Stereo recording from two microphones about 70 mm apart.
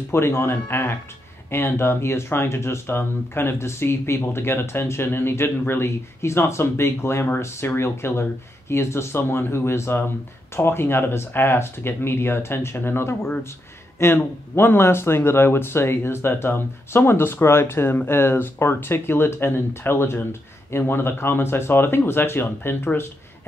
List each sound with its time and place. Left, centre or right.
0.1 s speech: left